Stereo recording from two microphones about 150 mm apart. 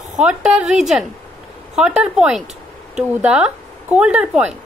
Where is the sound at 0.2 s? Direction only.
5° right (ahead or behind).